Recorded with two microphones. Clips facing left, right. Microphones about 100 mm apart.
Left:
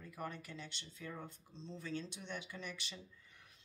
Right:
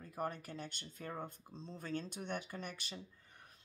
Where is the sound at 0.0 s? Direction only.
40° right (ahead or behind).